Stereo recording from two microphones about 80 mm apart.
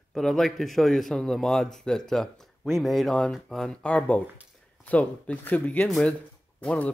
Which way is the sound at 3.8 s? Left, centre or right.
Centre.